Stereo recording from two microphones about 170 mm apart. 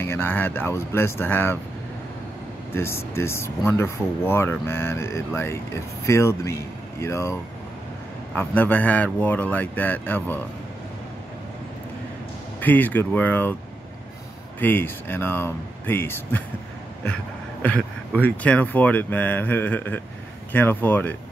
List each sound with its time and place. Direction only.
0.0 s speech: 15° left (ahead or behind)
2.7 s speech: 15° left (ahead or behind)
8.4 s speech: 10° left (ahead or behind)
12.5 s speech: 10° left (ahead or behind)
14.6 s speech: 10° left (ahead or behind)